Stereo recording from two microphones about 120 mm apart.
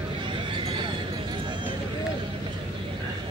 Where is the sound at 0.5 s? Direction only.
45° right (ahead or behind).